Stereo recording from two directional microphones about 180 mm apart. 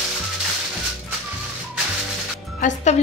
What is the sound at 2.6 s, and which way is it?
Frying, 40° left (ahead or behind).